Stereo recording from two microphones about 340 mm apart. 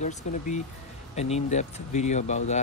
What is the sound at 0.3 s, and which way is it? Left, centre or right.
Speech, left.